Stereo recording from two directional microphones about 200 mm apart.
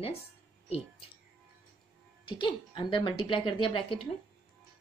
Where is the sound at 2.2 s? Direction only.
25° left (ahead or behind).